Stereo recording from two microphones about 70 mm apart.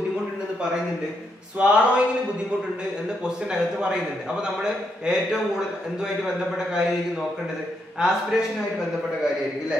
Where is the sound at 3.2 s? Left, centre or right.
Centre.